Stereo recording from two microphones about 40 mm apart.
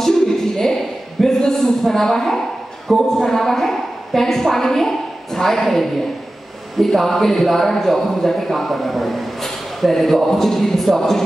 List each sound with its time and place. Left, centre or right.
0.6 s a man's voice: centre